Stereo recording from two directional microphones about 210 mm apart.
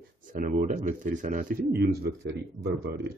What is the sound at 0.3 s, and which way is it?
Speech, 40° right (ahead or behind).